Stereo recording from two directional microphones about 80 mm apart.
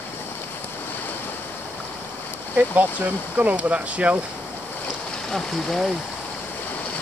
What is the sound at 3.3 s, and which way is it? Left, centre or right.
Speech, centre.